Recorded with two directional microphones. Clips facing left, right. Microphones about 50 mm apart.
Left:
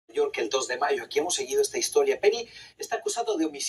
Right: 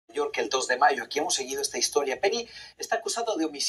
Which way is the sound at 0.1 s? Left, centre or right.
Centre.